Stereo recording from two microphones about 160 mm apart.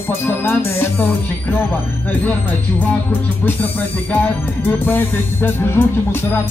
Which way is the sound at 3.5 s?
10° left (ahead or behind).